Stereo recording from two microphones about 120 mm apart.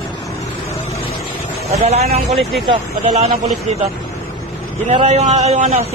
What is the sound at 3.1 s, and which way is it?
Speech, 60° right (ahead or behind).